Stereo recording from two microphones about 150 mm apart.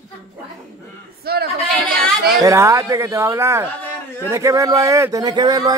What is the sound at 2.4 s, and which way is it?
Speech, 20° right (ahead or behind).